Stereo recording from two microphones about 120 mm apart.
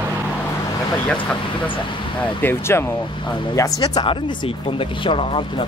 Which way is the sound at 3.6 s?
30° left (ahead or behind).